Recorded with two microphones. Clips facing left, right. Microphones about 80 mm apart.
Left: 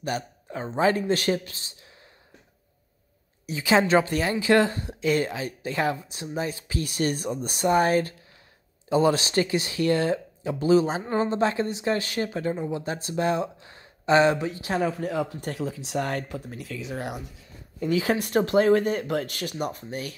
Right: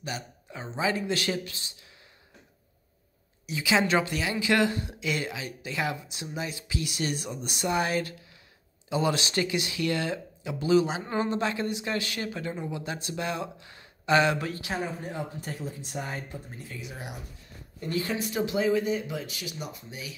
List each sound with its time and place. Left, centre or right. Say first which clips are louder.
0.0 s a woman's voice: left 7 dB; left
3.4 s a woman's voice: left 4 dB; left
14.8 s speech: left 7 dB; left
18.1 s speech: left 8 dB; left